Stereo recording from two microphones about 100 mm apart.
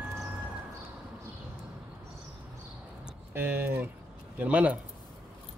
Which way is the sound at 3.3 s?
20° right (ahead or behind).